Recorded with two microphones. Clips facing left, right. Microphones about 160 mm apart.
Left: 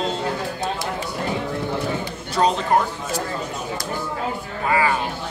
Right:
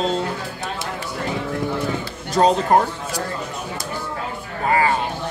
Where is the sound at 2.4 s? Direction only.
35° right (ahead or behind).